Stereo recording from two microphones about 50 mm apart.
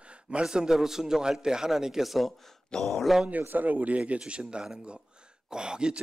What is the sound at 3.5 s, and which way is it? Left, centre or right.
A man's voice, right.